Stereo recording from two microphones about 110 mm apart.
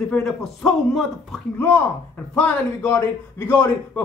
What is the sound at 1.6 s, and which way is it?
A man's voice, 10° left (ahead or behind).